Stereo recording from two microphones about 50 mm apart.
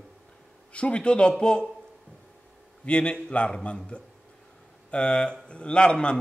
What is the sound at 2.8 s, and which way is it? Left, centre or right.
A man's voice, left.